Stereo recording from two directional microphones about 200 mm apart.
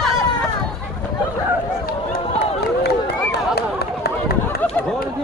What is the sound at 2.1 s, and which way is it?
Run, 30° left (ahead or behind).